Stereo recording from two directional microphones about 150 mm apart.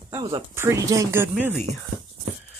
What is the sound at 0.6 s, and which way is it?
Speech, 20° right (ahead or behind).